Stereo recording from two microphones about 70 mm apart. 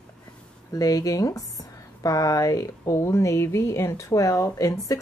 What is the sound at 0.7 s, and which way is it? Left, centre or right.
Speech, left.